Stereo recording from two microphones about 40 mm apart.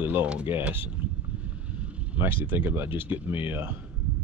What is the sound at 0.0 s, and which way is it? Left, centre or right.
Speech, right.